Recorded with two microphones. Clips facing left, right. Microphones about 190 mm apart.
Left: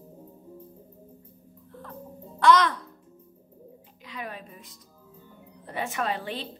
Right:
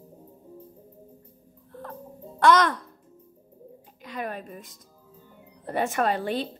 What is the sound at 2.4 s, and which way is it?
Speech, 50° right (ahead or behind).